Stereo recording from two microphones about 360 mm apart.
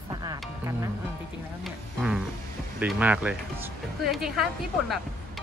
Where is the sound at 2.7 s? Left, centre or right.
Centre.